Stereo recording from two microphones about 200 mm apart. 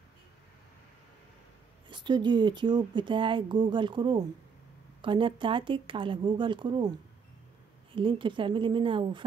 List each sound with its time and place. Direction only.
1.9 s speech: 25° right (ahead or behind)
7.9 s speech: 25° right (ahead or behind)